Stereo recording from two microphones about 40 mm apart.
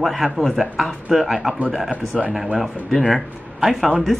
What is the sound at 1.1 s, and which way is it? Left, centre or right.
Speech, centre.